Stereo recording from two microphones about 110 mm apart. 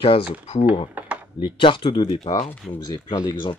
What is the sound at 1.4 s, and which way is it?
Speech, 50° left (ahead or behind).